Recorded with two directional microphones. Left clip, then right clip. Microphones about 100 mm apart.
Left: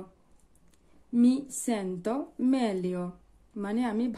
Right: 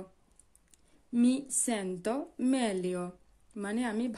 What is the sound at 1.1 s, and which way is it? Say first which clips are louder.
Speech: left 3 dB; 20° right (ahead or behind).